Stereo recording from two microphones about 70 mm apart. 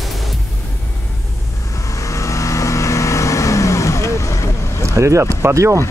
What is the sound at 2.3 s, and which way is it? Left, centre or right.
Vehicle, left.